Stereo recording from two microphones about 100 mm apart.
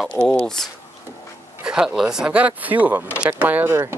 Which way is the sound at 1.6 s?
5° right (ahead or behind).